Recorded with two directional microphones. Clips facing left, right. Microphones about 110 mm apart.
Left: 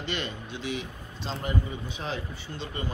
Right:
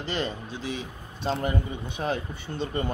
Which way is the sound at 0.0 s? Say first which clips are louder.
Right 3 dB; 35° right (ahead or behind).